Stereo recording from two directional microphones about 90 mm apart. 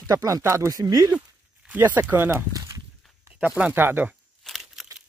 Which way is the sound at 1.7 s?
20° right (ahead or behind).